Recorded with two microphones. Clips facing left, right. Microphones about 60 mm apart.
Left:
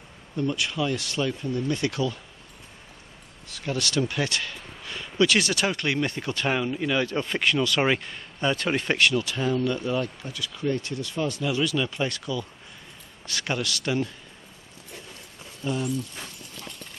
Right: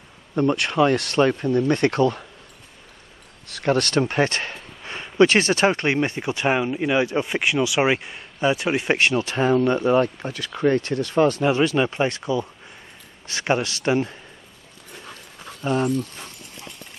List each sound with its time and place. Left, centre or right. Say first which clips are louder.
0.4 s speech: right 8 dB; right
3.4 s speech: right 9 dB; right; by 8.9 s centre
8.9 s speech: right 2 dB; right
15.6 s speech: right 6 dB; right